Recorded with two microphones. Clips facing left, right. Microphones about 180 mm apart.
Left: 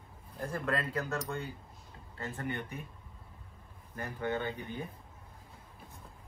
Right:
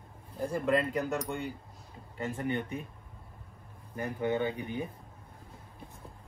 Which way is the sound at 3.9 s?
15° right (ahead or behind).